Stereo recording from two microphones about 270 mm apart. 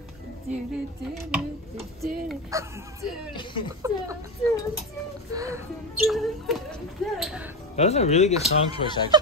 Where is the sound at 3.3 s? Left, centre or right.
Centre.